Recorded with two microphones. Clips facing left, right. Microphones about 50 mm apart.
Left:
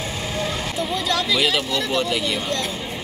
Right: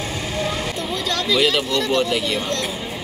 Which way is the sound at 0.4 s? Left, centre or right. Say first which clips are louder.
Even; centre.